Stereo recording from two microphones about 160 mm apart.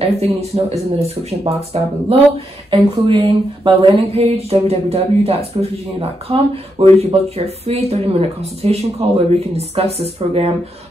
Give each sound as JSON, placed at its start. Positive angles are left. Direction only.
{"t": 0.0, "sound": "speech", "side_deg": -40}